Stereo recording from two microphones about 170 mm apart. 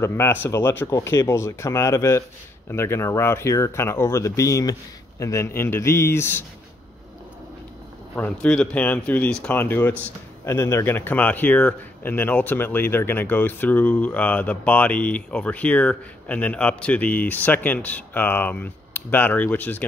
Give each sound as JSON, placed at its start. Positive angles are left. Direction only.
{"t": 0.0, "sound": "speech", "side_deg": 15}
{"t": 8.2, "sound": "speech", "side_deg": 5}